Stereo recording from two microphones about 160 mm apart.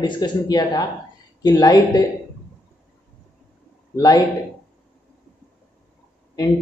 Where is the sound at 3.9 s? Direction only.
20° left (ahead or behind).